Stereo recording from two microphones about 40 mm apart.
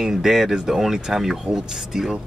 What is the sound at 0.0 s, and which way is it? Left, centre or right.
Speech, centre.